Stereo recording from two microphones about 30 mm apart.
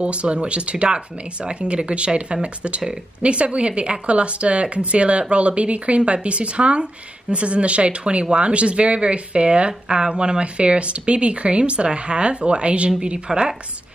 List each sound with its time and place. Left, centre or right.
0.0 s speech: right
13.3 s a woman's voice: right